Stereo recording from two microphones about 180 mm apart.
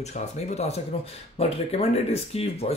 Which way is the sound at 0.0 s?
40° left (ahead or behind).